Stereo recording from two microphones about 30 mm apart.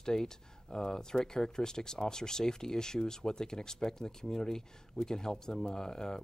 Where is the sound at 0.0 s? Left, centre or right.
Left.